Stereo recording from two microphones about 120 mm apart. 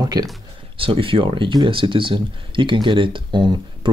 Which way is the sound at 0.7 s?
50° right (ahead or behind).